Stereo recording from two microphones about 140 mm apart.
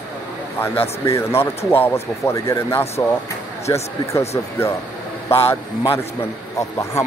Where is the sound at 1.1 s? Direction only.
20° left (ahead or behind).